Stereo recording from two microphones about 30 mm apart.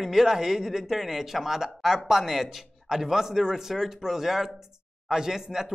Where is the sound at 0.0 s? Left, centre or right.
Centre.